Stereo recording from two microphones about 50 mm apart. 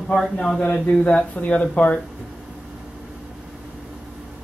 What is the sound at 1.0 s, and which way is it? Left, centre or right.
Speech, left.